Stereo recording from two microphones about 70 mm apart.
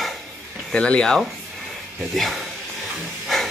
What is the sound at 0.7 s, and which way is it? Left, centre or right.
Speech, centre.